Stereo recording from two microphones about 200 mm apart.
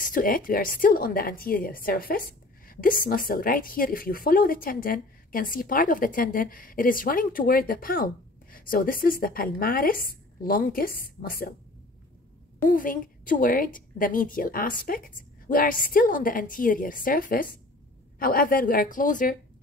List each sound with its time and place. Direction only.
0.0 s a woman's voice: 45° left (ahead or behind)
12.6 s a woman's voice: 45° left (ahead or behind)